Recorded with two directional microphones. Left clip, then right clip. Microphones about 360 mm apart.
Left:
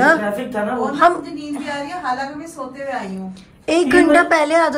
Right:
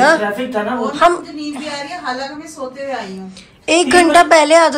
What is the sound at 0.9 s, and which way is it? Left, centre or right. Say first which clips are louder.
Speech: right 2 dB; centre.